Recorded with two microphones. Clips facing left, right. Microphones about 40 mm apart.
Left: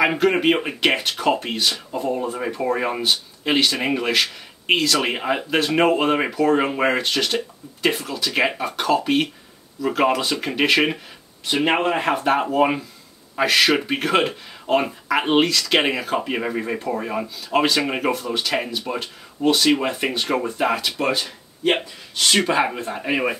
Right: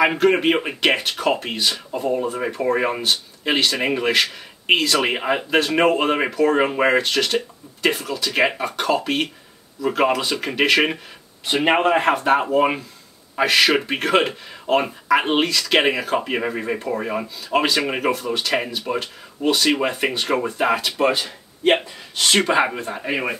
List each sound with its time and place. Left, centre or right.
0.0 s speech: centre
11.4 s speech: centre
21.0 s speech: centre